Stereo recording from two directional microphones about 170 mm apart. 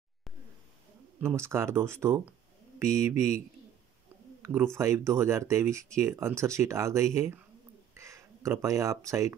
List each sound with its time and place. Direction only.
1.2 s speech: 15° right (ahead or behind)
4.4 s a sound: 15° right (ahead or behind)
4.7 s speech: 15° right (ahead or behind)